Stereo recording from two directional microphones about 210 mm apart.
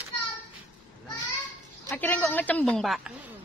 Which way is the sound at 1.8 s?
10° left (ahead or behind).